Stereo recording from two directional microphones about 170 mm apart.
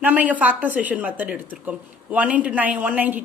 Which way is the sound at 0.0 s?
10° right (ahead or behind).